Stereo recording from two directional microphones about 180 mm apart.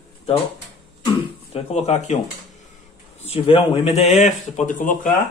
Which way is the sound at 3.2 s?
35° left (ahead or behind).